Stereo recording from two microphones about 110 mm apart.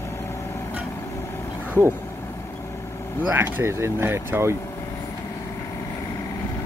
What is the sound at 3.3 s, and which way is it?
Speech, 20° right (ahead or behind).